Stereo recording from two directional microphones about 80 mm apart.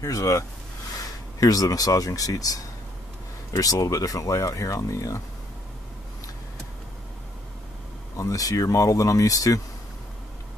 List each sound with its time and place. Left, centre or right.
0.0 s speech: left
8.2 s speech: left